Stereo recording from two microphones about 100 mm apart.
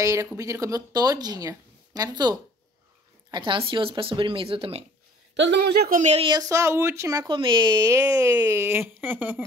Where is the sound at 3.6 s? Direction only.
65° right (ahead or behind).